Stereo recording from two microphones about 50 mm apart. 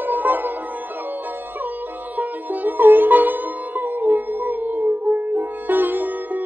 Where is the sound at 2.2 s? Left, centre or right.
Right.